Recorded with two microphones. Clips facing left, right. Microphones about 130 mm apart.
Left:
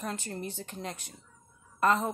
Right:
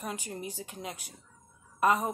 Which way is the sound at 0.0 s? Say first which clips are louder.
Left 1 dB; 10° right (ahead or behind).